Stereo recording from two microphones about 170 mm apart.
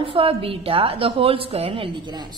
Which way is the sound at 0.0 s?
30° right (ahead or behind).